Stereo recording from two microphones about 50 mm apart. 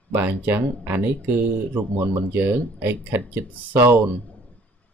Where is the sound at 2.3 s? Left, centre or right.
Right.